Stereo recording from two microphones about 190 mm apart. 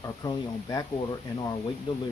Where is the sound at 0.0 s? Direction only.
20° left (ahead or behind).